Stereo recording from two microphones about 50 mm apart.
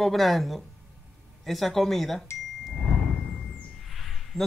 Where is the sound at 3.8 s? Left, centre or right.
Centre.